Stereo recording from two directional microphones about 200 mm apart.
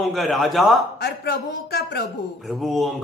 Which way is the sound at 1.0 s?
55° left (ahead or behind).